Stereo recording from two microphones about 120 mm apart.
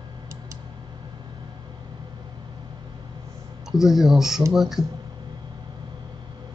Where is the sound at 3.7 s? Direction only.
5° right (ahead or behind).